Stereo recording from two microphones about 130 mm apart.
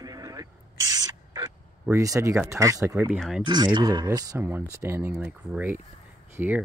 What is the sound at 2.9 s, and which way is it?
Speech, 10° right (ahead or behind).